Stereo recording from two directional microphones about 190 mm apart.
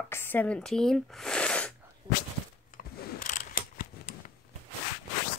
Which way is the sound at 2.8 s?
45° left (ahead or behind).